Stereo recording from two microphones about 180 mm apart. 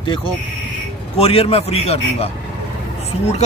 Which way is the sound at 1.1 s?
35° left (ahead or behind).